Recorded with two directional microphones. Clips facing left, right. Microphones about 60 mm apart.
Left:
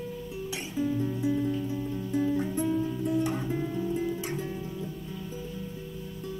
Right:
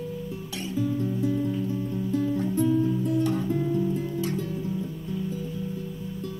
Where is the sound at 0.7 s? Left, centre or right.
Centre.